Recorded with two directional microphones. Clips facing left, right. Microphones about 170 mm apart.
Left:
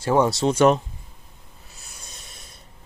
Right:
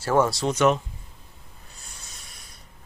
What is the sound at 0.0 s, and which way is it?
Speech, 15° left (ahead or behind).